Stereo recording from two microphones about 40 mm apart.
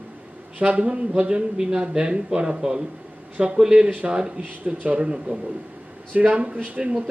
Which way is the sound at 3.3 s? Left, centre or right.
Right.